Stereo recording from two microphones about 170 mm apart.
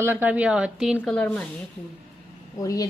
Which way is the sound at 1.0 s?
5° left (ahead or behind).